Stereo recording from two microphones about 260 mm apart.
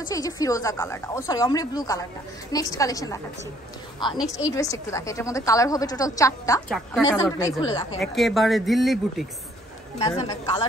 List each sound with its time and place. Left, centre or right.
0.1 s a woman's voice: centre
6.7 s speech: centre
7.1 s a woman's voice: centre
8.0 s speech: centre
9.9 s a woman's voice: centre